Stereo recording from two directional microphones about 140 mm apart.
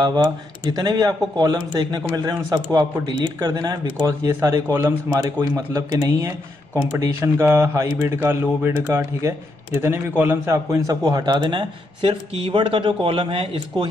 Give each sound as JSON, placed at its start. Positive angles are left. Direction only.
{"t": 0.0, "sound": "speech", "side_deg": -30}
{"t": 5.7, "sound": "a man's voice", "side_deg": -25}